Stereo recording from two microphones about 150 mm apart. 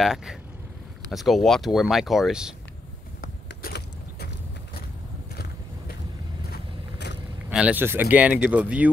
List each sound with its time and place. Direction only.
0.0 s speech: centre (ahead or behind)
3.2 s vehicle: 85° left
5.3 s vehicle: 90° left
7.5 s speech: 10° right (ahead or behind)